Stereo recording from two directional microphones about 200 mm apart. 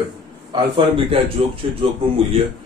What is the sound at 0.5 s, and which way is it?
A man's voice, 25° right (ahead or behind).